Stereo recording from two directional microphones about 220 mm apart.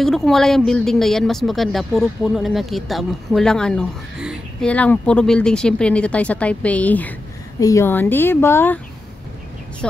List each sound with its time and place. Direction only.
0.0 s speech: centre (ahead or behind)